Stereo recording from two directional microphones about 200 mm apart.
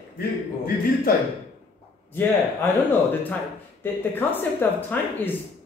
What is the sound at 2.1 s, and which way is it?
Speech, 10° left (ahead or behind).